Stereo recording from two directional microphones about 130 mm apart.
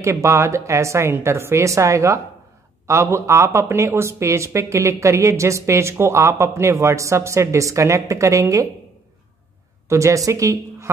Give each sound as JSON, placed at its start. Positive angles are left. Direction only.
{"t": 0.0, "sound": "speech", "side_deg": -20}
{"t": 9.8, "sound": "a woman's voice", "side_deg": -25}